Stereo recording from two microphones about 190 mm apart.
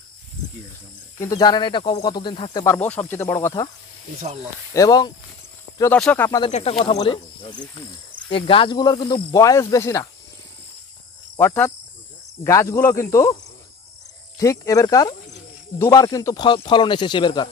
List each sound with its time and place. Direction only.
1.1 s speech: 20° left (ahead or behind)
2.6 s speech: 10° left (ahead or behind)
4.7 s speech: 20° left (ahead or behind)
5.8 s speech: 5° left (ahead or behind)
6.5 s speech: 30° left (ahead or behind); by 10.0 s 15° left (ahead or behind)
11.3 s speech: 10° left (ahead or behind)
14.4 s speech: 15° left (ahead or behind)